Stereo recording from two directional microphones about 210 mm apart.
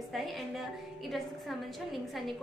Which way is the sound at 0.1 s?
Centre (ahead or behind).